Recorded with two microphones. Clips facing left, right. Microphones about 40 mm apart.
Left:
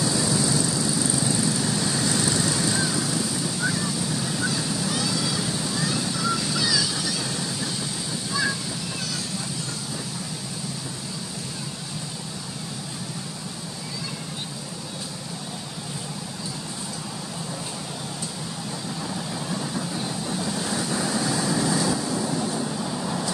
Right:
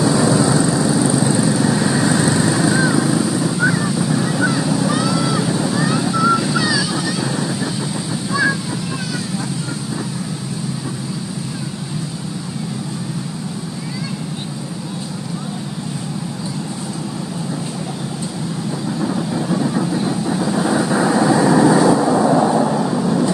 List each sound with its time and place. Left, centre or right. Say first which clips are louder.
0.0 s vehicle: right 10 dB; right
4.0 s waves: right 9 dB; right
5.8 s a sound: right 10 dB; centre
8.3 s music: right 9 dB; centre
18.9 s vehicle: right 12 dB; right
19.7 s train: right 10 dB; right
20.0 s vehicle: right 10 dB; right
22.1 s vehicle: right 13 dB; right
22.6 s vehicle: right 11 dB; right
23.0 s vehicle: right 11 dB; right